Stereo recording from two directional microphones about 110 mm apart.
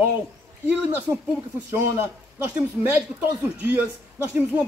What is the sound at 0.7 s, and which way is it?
Speech, 15° right (ahead or behind).